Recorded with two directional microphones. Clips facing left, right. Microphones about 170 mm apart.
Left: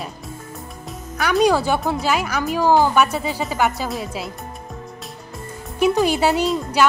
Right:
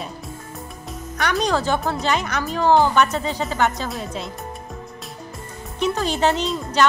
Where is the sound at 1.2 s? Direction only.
5° left (ahead or behind).